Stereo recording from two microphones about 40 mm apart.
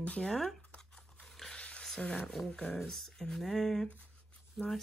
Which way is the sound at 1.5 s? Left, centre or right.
Left.